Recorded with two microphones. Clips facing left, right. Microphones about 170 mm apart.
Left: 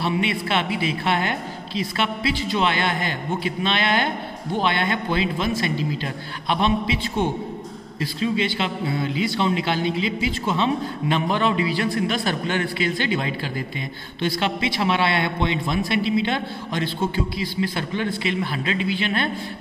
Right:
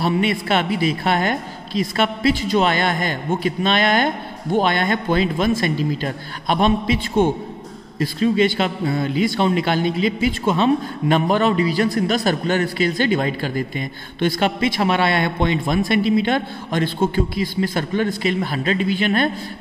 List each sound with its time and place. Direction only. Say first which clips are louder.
0.0 s speech: right 4 dB; 45° right (ahead or behind)